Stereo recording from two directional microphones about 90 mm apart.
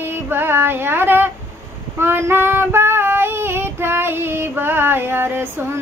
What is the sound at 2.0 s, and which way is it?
Child singing, 25° right (ahead or behind).